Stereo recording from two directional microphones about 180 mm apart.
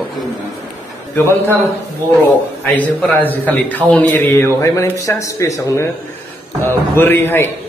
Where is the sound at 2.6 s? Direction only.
10° left (ahead or behind).